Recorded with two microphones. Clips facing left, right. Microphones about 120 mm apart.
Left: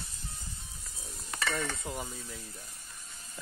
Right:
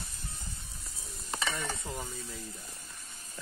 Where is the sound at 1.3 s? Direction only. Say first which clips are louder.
Left 1 dB; 20° right (ahead or behind).